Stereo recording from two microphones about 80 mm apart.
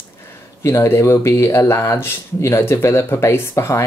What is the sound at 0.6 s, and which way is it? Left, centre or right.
Speech, left.